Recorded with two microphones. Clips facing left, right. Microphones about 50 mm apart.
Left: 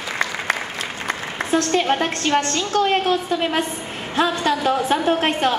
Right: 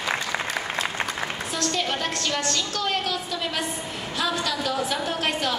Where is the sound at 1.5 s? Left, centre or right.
Left.